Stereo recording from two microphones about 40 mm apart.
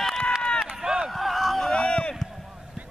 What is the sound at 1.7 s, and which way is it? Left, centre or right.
Run, left.